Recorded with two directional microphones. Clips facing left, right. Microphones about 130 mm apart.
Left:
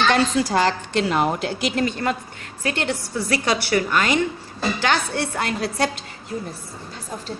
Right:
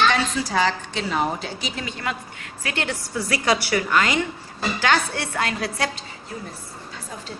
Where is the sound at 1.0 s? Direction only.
75° left (ahead or behind).